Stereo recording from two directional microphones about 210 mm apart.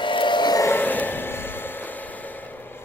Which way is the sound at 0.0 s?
25° left (ahead or behind).